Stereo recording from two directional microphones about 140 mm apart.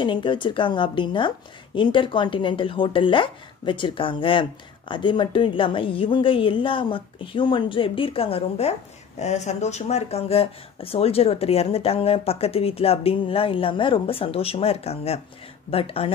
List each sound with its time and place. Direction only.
0.0 s speech: 35° left (ahead or behind)